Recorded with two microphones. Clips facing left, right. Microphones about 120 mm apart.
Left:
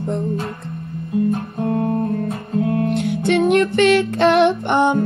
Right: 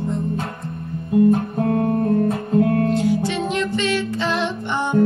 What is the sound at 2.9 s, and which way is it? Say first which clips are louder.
Music: left 2 dB; 60° left (ahead or behind).